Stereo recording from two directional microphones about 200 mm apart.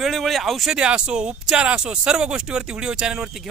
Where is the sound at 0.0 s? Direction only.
Centre (ahead or behind).